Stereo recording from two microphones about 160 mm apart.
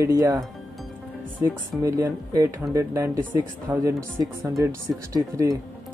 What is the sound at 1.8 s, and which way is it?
Speech, 20° right (ahead or behind).